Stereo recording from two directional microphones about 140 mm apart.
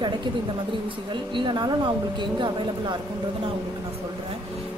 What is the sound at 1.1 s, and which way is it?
A woman's voice, 35° right (ahead or behind).